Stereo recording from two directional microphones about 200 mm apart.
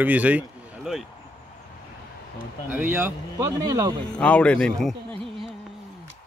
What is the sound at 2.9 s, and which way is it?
Speech, 15° right (ahead or behind).